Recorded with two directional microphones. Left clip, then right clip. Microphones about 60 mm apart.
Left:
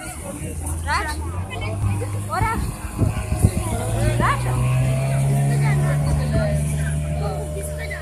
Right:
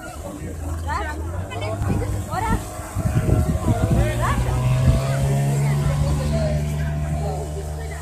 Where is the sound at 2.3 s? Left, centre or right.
Left.